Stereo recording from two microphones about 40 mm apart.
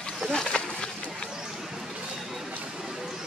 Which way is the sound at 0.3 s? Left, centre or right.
Centre.